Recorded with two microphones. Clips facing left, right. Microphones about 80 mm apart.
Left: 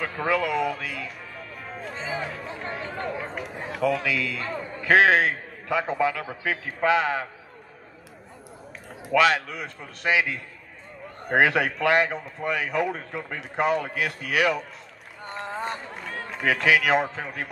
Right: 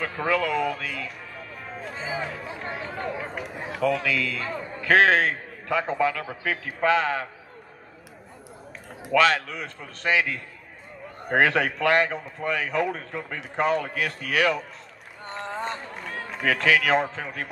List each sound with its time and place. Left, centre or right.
0.0 s music: centre
4.4 s speech: centre
6.2 s a man's voice: centre
6.8 s speech: centre
9.1 s speech: centre
11.2 s speech: centre
16.0 s a man's voice: centre